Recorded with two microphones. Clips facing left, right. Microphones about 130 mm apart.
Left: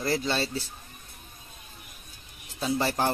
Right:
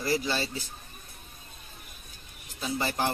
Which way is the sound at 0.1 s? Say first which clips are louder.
Even; 25° left (ahead or behind).